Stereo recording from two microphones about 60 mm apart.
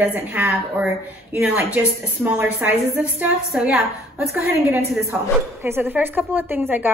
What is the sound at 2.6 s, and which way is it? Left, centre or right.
Speech, right.